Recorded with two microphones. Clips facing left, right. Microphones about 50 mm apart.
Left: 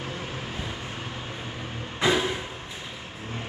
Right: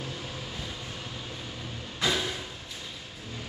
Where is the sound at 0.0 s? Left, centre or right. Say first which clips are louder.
Left 4 dB; left.